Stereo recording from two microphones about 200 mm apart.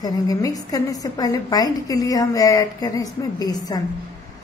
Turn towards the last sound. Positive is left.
turn(degrees=20)  # may be behind; listen again after turning